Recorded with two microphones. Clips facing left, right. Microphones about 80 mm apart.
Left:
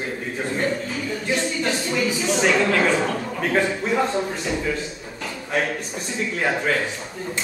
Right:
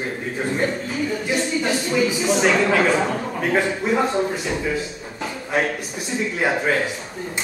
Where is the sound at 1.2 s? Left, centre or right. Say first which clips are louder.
Left 1 dB; centre.